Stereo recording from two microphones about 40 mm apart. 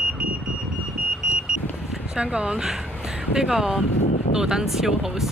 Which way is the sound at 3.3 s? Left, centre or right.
Centre.